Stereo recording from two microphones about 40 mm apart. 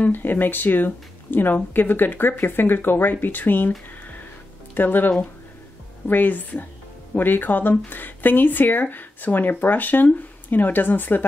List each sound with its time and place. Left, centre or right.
0.1 s speech: left
4.7 s speech: left